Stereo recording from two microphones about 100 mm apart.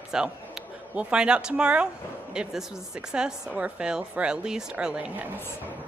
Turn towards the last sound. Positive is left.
turn(degrees=-10)  # may be behind; listen again after turning